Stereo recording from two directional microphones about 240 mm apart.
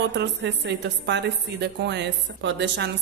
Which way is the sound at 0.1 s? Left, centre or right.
Right.